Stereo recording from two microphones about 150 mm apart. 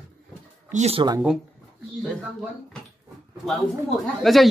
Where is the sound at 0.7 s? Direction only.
45° right (ahead or behind).